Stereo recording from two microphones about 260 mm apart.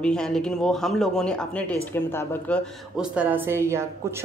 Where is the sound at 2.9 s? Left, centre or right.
Centre.